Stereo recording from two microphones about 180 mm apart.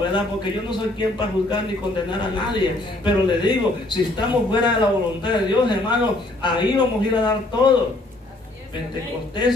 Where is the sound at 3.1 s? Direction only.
25° left (ahead or behind).